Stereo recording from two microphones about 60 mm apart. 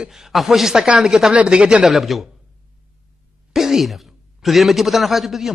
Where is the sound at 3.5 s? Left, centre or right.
Centre.